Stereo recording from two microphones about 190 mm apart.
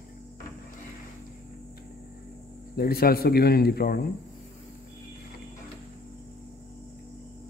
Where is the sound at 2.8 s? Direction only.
50° left (ahead or behind).